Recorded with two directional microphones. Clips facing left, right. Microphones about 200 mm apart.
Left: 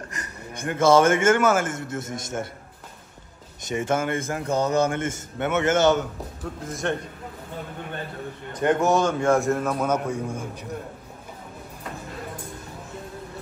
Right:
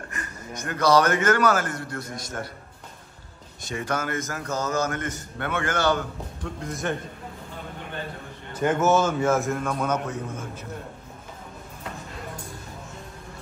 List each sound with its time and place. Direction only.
0.7 s a man's voice: 25° left (ahead or behind)
3.6 s a man's voice: 20° left (ahead or behind)
6.4 s a man's voice: centre (ahead or behind)
8.5 s a man's voice: 5° right (ahead or behind); by 10.7 s 15° left (ahead or behind)